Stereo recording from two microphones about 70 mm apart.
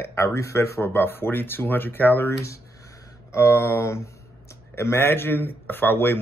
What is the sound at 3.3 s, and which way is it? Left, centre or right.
Speech, left.